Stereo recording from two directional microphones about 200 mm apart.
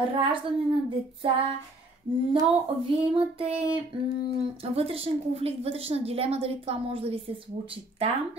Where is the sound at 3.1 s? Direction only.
30° right (ahead or behind).